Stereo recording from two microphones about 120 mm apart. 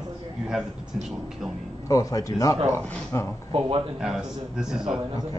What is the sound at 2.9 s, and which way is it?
Speech, 15° left (ahead or behind).